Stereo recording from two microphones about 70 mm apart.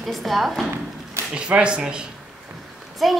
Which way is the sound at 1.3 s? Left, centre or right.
Centre.